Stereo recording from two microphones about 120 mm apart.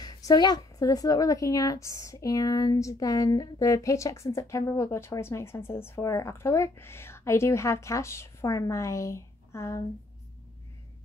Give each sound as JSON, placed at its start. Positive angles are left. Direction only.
{"t": 0.0, "sound": "a woman's voice", "side_deg": 35}